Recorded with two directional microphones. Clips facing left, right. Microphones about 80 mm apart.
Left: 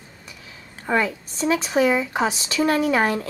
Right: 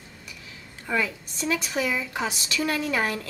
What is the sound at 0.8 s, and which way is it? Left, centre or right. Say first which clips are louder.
Speech: left 5 dB; left.